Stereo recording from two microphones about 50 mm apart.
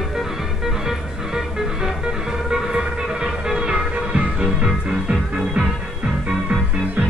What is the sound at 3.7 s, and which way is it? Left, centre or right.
Music, right.